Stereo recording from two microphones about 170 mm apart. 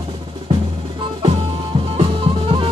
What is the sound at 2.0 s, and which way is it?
Drum kit, 30° right (ahead or behind).